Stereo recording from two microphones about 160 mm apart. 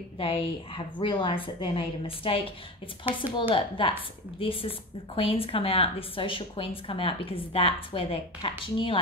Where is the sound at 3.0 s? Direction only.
10° right (ahead or behind).